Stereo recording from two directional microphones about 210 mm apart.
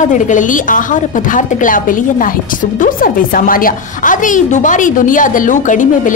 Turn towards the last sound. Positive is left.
turn(degrees=35)  # may be behind; listen again after turning